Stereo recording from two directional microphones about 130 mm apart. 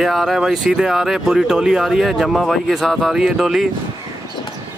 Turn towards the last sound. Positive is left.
turn(degrees=-5)  # may be behind; listen again after turning